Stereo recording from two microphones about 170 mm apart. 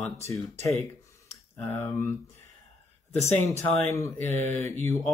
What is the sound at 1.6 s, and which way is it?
Speech, 15° left (ahead or behind).